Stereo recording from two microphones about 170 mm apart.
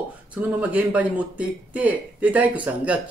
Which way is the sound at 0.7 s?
10° right (ahead or behind).